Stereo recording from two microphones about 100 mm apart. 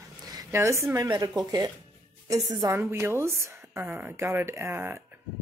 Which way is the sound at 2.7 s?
25° right (ahead or behind).